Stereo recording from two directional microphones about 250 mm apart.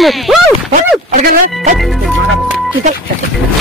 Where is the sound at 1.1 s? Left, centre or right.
Right.